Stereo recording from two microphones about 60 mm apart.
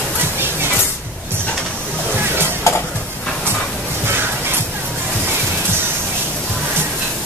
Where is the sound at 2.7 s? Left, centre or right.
Left.